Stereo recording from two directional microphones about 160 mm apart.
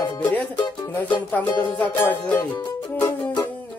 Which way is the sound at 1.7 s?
10° left (ahead or behind).